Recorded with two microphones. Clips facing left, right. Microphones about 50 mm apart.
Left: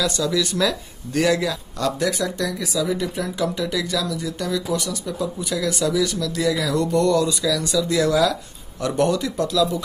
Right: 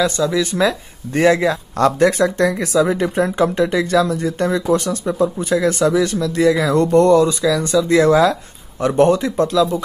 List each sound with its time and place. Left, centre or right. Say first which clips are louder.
0.0 s speech: right 5 dB; right